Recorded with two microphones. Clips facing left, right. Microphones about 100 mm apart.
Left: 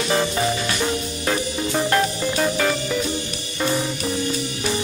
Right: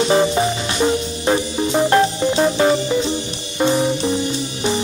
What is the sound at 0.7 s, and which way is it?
Music, 25° right (ahead or behind).